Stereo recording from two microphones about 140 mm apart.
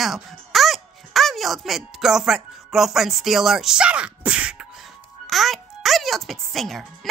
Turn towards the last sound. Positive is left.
turn(degrees=0)  # may be behind; listen again after turning